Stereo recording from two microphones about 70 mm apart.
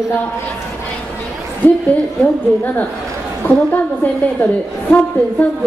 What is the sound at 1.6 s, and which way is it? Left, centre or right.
Speech, left.